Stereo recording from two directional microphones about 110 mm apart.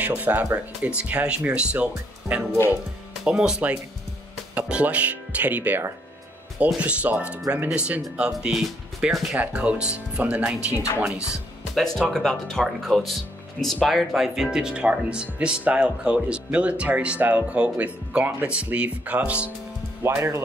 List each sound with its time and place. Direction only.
0.0 s speech: 15° right (ahead or behind)
10.7 s speech: 25° left (ahead or behind)
11.7 s speech: 5° left (ahead or behind); by 19.5 s 10° right (ahead or behind)
20.0 s speech: 25° right (ahead or behind)